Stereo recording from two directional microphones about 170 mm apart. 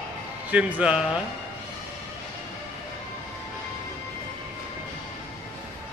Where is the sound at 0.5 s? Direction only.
5° right (ahead or behind).